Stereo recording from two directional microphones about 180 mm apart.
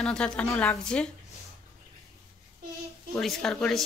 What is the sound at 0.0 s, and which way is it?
Speech, 5° left (ahead or behind).